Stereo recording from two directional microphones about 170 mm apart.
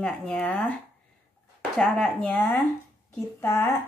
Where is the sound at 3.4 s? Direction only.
15° left (ahead or behind).